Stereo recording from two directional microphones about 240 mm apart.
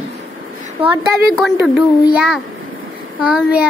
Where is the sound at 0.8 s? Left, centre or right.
Right.